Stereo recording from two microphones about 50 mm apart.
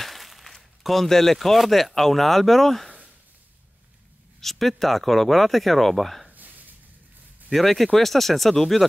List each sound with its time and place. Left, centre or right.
0.0 s speech: centre
4.4 s speech: centre
6.2 s a sound: right
7.5 s speech: centre